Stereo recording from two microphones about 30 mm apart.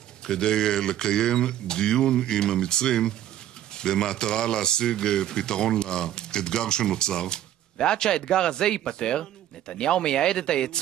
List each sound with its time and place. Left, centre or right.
0.3 s speech: left